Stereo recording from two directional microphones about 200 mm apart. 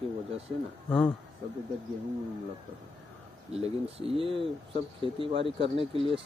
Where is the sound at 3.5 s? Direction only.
30° right (ahead or behind).